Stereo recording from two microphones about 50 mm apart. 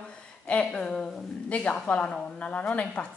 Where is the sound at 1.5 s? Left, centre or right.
Left.